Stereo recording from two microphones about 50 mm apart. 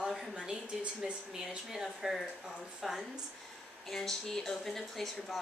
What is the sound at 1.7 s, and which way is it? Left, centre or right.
Speech, centre.